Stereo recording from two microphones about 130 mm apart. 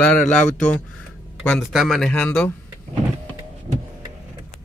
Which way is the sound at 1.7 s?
Centre (ahead or behind).